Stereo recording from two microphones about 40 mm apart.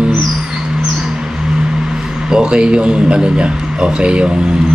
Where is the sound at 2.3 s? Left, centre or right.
Right.